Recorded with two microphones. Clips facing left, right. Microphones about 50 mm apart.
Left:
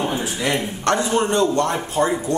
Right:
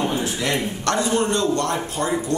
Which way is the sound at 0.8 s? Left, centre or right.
Left.